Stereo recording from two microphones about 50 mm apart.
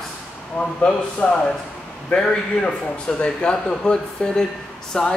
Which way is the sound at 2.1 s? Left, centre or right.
Centre.